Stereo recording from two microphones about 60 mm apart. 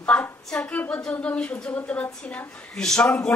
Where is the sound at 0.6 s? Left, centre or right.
Left.